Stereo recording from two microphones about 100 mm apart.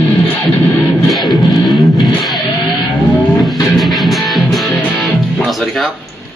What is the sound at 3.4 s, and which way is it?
Music, centre (ahead or behind).